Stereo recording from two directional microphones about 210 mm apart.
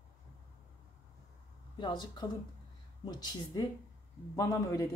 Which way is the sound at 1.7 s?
20° left (ahead or behind).